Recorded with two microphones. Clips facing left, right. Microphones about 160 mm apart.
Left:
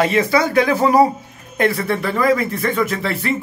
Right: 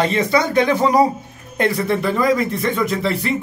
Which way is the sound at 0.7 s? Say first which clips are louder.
Left 2 dB; 25° right (ahead or behind).